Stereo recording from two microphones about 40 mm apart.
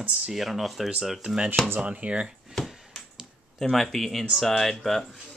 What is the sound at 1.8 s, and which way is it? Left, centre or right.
Speech, right.